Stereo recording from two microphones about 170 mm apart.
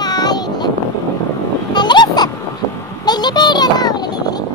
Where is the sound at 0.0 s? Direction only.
25° left (ahead or behind).